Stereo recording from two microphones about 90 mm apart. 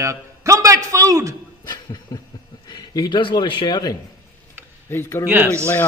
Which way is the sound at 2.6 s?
50° left (ahead or behind).